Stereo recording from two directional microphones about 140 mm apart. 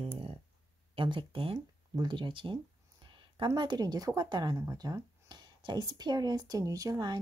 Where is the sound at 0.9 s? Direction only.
35° right (ahead or behind).